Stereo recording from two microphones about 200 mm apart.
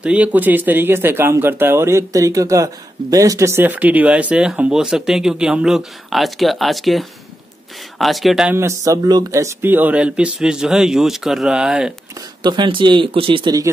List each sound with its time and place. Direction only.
0.0 s speech: 5° right (ahead or behind)
12.4 s speech: 25° right (ahead or behind)